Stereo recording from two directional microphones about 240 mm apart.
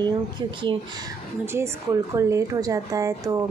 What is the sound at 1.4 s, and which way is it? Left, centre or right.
A woman's voice, centre.